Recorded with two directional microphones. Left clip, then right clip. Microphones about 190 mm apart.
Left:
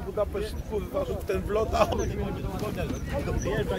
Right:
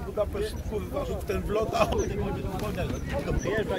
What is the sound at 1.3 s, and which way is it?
Speech, 35° left (ahead or behind).